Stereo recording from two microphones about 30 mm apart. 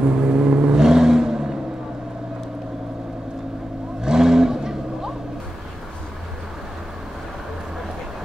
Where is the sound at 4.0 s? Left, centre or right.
Right.